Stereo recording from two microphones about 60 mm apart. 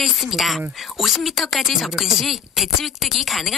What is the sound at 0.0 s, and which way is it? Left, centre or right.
Speech, centre.